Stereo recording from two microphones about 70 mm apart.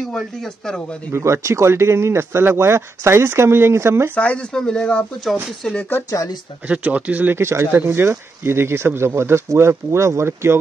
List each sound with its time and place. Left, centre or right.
1.1 s speech: right
4.1 s speech: centre
5.8 s speech: left
6.0 s speech: left
6.7 s speech: centre
7.3 s speech: right